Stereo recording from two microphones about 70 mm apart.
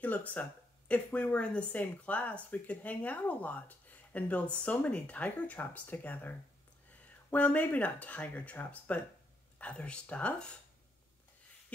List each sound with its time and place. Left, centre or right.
0.0 s a woman's voice: left